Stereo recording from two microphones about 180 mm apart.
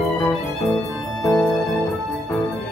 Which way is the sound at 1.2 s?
20° left (ahead or behind).